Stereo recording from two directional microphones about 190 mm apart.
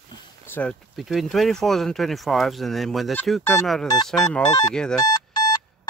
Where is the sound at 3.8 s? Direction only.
20° left (ahead or behind).